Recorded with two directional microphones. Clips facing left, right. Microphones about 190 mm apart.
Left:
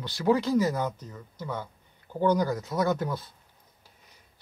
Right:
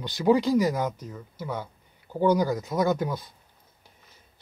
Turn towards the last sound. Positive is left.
turn(degrees=-15)  # may be behind; listen again after turning